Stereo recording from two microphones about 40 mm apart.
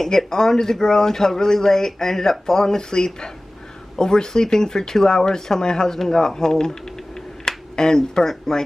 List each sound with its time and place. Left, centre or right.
0.0 s speech: centre